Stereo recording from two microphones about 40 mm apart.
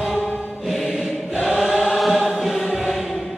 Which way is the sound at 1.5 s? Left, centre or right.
Centre.